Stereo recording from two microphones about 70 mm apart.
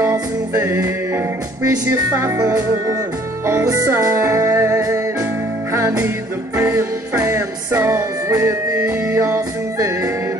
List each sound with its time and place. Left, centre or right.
0.0 s music: right
1.9 s speech: right
2.3 s music: right
4.0 s music: right
7.7 s speech: right
8.4 s music: right